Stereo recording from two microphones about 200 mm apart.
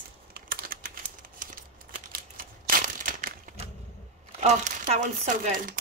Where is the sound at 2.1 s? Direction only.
45° right (ahead or behind).